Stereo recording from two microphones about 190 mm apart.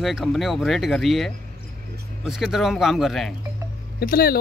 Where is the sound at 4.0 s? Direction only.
50° left (ahead or behind).